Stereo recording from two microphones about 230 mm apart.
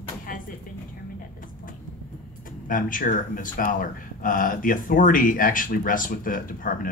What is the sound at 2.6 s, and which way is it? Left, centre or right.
Speech, left.